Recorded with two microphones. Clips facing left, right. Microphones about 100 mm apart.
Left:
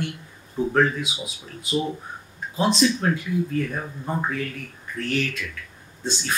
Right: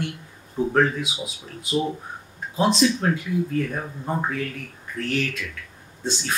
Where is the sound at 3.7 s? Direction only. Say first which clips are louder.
Right 1 dB; 15° right (ahead or behind).